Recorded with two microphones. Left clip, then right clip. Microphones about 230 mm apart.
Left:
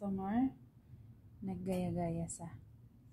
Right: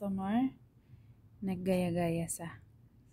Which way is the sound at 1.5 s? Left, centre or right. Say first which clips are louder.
Right 7 dB; right.